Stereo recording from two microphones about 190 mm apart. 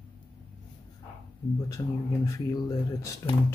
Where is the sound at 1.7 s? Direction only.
15° left (ahead or behind).